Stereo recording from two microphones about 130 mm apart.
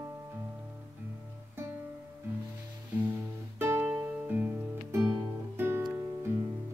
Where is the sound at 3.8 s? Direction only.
15° right (ahead or behind).